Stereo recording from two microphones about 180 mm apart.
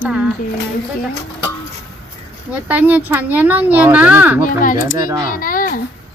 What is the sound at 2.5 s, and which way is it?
Speech, 10° right (ahead or behind).